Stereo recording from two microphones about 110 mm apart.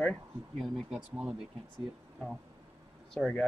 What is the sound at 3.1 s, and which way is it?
Speech, 5° left (ahead or behind).